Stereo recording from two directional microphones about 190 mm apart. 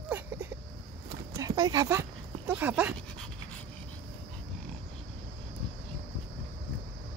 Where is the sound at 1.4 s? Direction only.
20° right (ahead or behind).